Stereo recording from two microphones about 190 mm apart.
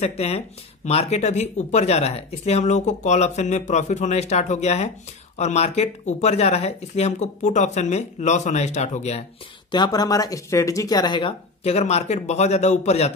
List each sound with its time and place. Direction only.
0.0 s speech: 35° left (ahead or behind)
9.7 s speech: 20° left (ahead or behind)